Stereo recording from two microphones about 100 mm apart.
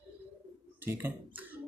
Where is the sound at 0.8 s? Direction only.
20° right (ahead or behind).